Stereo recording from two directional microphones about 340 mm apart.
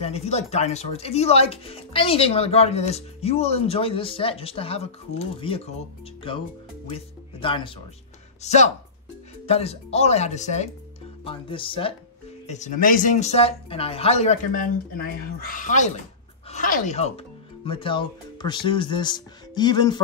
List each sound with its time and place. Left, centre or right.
0.0 s speech: centre
6.9 s speech: centre